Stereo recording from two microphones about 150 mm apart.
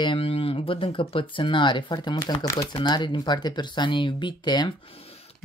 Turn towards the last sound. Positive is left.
turn(degrees=30)  # may be behind; listen again after turning